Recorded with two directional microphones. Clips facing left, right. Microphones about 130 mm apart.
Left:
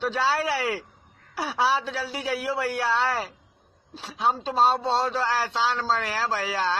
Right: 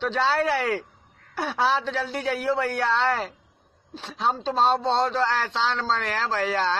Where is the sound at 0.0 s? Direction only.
5° left (ahead or behind).